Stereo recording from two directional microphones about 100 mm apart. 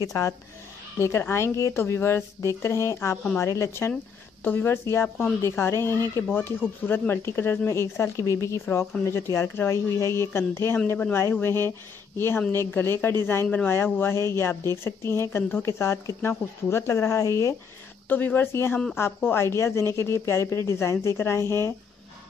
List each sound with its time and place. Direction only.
0.0 s a woman's voice: 35° left (ahead or behind)
18.0 s a woman's voice: 20° left (ahead or behind)